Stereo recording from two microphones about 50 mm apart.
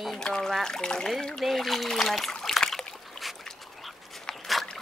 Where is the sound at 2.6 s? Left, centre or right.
Centre.